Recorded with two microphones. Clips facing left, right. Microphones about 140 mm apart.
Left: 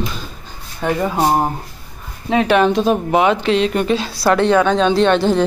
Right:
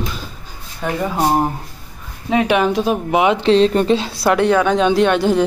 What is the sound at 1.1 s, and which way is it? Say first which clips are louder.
Speech: right 1 dB; 20° left (ahead or behind).